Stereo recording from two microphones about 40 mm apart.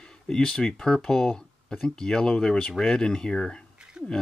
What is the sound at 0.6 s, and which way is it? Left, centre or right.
Speech, centre.